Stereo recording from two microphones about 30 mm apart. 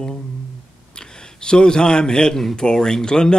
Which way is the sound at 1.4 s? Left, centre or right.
Left.